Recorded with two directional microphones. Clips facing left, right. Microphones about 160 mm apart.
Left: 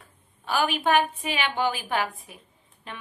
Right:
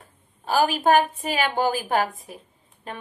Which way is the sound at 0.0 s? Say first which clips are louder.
Right 3 dB; 40° right (ahead or behind).